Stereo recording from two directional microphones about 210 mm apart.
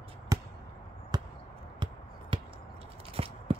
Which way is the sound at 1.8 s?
20° right (ahead or behind).